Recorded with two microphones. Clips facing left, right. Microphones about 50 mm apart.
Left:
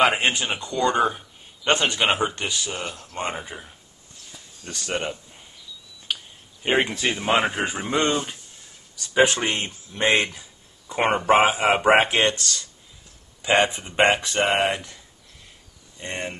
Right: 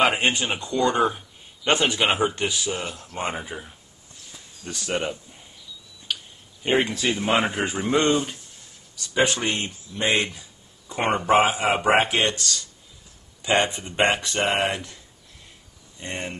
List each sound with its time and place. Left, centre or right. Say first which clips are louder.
0.0 s a man's voice: left 1 dB; centre
4.6 s a man's voice: right 1 dB; centre
6.6 s speech: even; centre
9.1 s speech: left 3 dB; left
10.9 s speech: left 1 dB; centre
16.0 s speech: left 1 dB; centre